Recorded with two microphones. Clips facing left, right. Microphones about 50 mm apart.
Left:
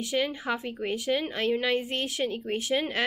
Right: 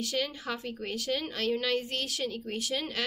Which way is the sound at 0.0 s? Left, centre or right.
Left.